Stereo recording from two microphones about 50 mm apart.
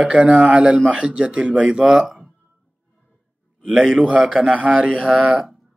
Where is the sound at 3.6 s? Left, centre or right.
Centre.